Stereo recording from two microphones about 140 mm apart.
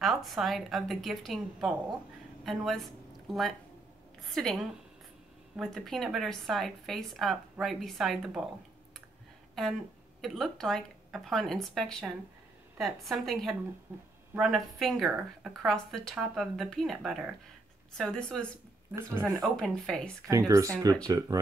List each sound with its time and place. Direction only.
0.0 s a woman's voice: centre (ahead or behind)
10.2 s a woman's voice: centre (ahead or behind)
13.9 s speech: 15° right (ahead or behind)
14.3 s a woman's voice: centre (ahead or behind)
18.9 s speech: 20° right (ahead or behind)
19.4 s a woman's voice: 5° left (ahead or behind)
20.2 s speech: 25° right (ahead or behind)